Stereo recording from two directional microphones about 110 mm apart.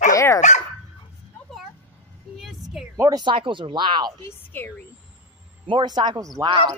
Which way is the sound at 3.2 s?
50° right (ahead or behind).